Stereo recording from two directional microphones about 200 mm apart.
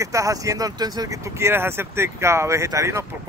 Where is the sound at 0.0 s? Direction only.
15° right (ahead or behind).